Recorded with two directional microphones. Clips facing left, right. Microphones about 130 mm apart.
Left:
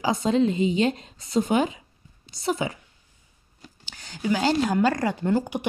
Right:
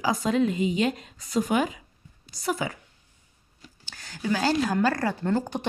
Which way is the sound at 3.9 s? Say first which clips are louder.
Left 2 dB; 20° left (ahead or behind).